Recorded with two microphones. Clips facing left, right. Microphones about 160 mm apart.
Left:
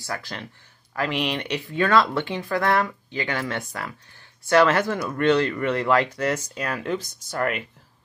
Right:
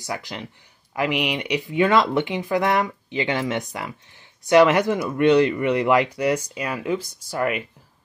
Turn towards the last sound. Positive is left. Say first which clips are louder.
# right 2 dB
turn(degrees=-10)  # may be behind; listen again after turning